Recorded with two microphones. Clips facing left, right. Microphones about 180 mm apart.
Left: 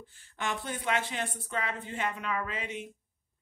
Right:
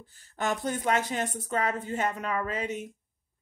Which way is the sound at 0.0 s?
40° right (ahead or behind).